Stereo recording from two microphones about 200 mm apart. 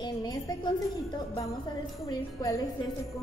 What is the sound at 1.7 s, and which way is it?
Speech, 20° left (ahead or behind).